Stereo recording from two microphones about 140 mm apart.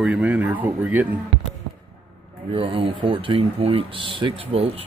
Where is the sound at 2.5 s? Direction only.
40° right (ahead or behind).